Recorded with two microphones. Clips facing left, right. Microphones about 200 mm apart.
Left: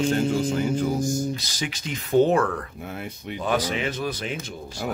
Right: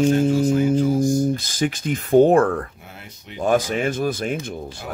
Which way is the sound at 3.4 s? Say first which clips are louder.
Right 6 dB; 50° right (ahead or behind).